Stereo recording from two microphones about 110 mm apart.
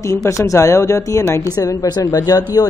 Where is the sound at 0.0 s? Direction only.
30° left (ahead or behind).